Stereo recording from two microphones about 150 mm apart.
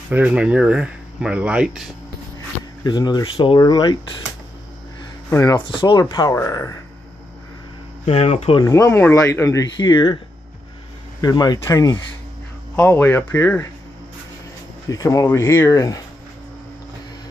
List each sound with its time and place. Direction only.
0.1 s speech: 10° right (ahead or behind)
2.8 s speech: 25° left (ahead or behind)
5.3 s speech: 20° left (ahead or behind)
5.7 s speech: 30° left (ahead or behind)
8.0 s speech: 45° left (ahead or behind)
8.6 s speech: 20° left (ahead or behind)
11.1 s speech: 25° left (ahead or behind)
12.7 s speech: 15° left (ahead or behind)
14.9 s speech: 20° left (ahead or behind)